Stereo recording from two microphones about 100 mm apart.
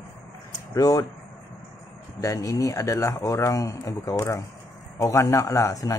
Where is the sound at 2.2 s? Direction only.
35° left (ahead or behind).